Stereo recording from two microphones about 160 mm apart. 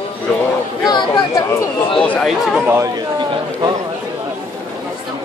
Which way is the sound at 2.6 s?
20° right (ahead or behind).